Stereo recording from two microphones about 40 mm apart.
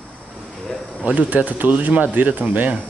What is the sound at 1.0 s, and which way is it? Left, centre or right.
Speech, right.